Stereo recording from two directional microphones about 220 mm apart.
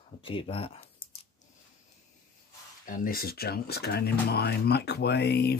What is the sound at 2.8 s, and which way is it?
Speech, 40° left (ahead or behind).